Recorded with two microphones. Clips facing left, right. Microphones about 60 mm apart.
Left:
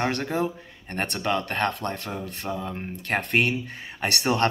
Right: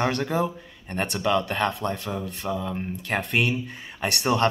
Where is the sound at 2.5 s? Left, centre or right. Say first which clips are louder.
Right 2 dB; left.